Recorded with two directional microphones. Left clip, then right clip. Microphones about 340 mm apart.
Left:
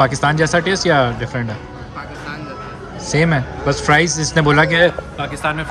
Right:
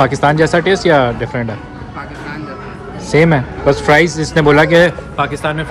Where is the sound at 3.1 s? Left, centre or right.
Centre.